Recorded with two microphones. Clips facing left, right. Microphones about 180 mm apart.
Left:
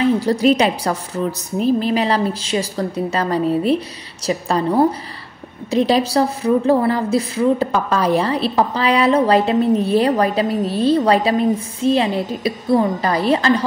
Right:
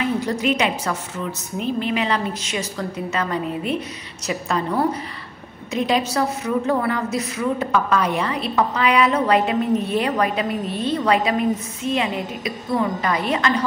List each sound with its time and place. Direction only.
0.0 s a woman's voice: 35° left (ahead or behind)